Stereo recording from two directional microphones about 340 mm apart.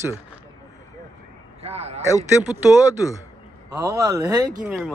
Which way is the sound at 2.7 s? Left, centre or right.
Centre.